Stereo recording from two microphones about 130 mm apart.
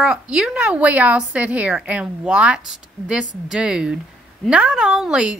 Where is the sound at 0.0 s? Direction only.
5° right (ahead or behind).